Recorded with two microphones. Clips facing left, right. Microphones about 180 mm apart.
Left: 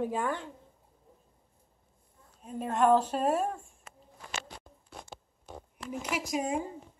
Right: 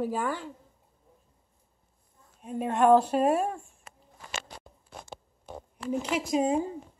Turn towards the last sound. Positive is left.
turn(degrees=-30)  # may be behind; listen again after turning